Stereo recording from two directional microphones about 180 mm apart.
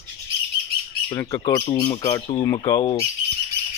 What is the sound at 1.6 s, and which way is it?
Speech, 30° left (ahead or behind).